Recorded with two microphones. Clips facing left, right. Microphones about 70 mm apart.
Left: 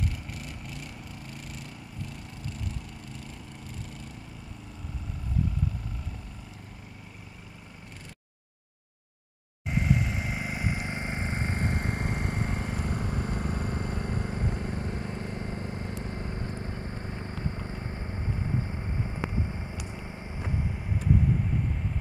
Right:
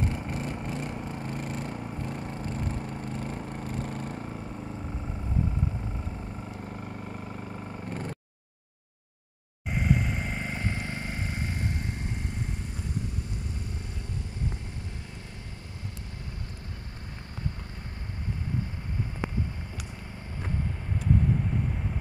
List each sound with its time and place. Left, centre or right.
0.0 s a sound: right
2.0 s lawn mower: right
9.7 s vehicle: centre; by 14.8 s left